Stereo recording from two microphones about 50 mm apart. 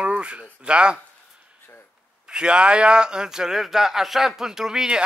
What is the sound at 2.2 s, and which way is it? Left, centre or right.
Speech, centre.